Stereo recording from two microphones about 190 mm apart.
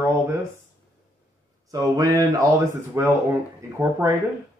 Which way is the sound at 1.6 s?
20° right (ahead or behind).